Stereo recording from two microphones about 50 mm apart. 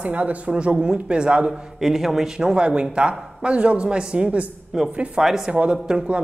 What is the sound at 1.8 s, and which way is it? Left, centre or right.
Speech, centre.